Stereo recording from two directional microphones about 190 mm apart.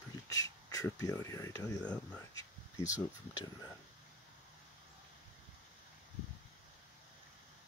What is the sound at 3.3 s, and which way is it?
Speech, 20° left (ahead or behind).